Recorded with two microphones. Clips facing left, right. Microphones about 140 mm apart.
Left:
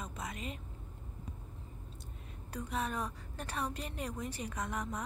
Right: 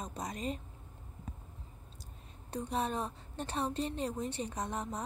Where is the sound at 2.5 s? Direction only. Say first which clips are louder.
Right 3 dB; 30° right (ahead or behind).